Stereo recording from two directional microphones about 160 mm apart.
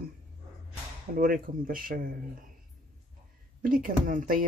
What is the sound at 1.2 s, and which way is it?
Speech, 60° right (ahead or behind).